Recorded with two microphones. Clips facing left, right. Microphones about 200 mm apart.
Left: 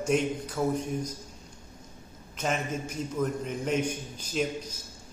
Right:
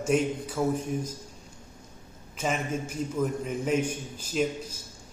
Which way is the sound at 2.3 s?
5° right (ahead or behind).